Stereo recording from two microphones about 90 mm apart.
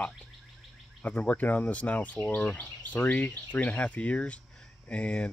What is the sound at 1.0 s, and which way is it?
Speech, 15° left (ahead or behind).